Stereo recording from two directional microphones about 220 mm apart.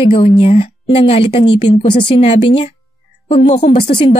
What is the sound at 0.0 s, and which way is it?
A woman's voice, 25° left (ahead or behind).